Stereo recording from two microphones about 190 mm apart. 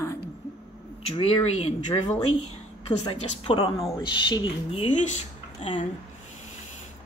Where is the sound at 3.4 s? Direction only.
30° left (ahead or behind).